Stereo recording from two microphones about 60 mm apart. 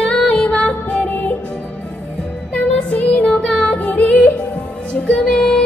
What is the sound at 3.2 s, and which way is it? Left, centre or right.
Music, centre.